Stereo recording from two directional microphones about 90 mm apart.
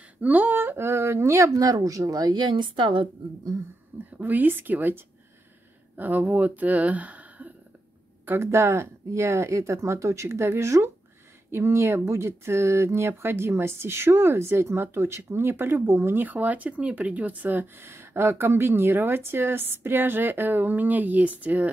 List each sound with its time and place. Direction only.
0.2 s speech: 20° right (ahead or behind); by 3.1 s 65° right (ahead or behind)
4.2 s speech: 20° right (ahead or behind)
8.3 s speech: 30° right (ahead or behind)